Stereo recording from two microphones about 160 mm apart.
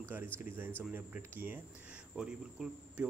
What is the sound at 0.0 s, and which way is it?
A man's voice, 15° right (ahead or behind).